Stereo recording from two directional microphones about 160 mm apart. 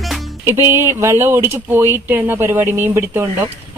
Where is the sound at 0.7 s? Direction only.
15° right (ahead or behind).